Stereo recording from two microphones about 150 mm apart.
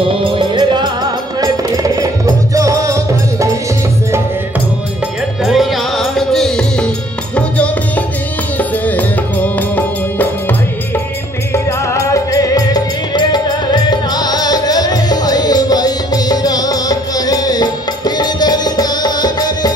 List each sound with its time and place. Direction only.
0.0 s music: 35° right (ahead or behind)
5.4 s music: centre (ahead or behind)
11.5 s music: 20° left (ahead or behind)